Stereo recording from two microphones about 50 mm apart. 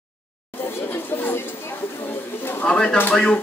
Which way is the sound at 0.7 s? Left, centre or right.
Left.